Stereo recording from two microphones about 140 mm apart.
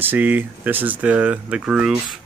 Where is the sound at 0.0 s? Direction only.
15° right (ahead or behind).